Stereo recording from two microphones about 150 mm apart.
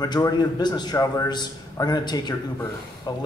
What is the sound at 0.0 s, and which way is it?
A man's voice, 25° left (ahead or behind).